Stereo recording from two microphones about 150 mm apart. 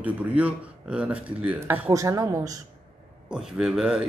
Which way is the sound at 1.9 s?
20° right (ahead or behind).